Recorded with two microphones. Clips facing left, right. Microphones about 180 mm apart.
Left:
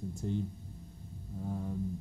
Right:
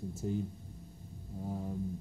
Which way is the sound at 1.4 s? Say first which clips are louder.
Left 1 dB; 20° right (ahead or behind).